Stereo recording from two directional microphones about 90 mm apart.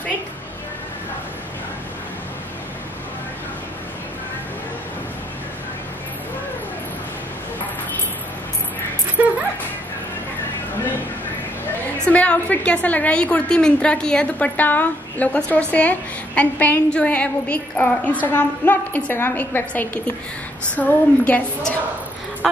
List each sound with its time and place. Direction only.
9.2 s music: 15° right (ahead or behind)
12.0 s a woman's voice: 15° left (ahead or behind)